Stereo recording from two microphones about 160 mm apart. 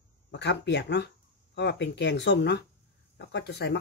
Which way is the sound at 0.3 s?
90° left.